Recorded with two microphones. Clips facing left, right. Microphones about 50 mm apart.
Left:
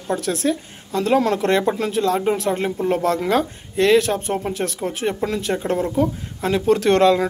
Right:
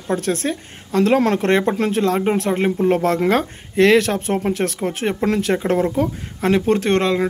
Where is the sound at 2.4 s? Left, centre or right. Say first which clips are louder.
Right 3 dB; right.